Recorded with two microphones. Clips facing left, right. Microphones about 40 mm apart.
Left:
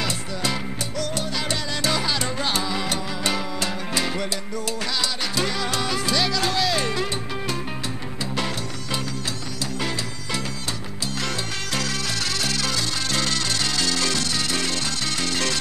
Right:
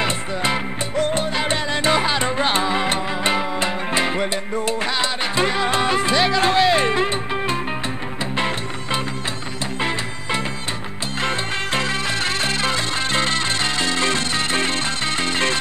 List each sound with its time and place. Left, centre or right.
0.0 s music: right
9.8 s music: right